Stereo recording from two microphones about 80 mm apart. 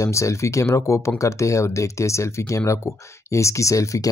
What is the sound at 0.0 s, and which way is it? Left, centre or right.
Speech, left.